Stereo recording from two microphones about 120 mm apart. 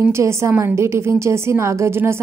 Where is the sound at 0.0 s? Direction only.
25° right (ahead or behind).